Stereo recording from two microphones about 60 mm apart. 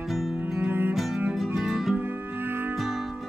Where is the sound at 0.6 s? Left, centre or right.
Right.